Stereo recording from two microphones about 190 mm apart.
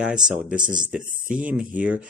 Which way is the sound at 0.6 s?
45° right (ahead or behind).